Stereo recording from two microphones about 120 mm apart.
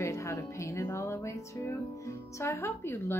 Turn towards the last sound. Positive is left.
turn(degrees=20)  # may be behind; listen again after turning